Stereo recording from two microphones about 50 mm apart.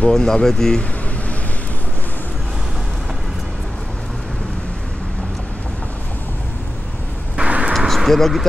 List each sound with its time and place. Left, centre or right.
0.0 s speech: centre
7.3 s vehicle: right
7.7 s a sound: centre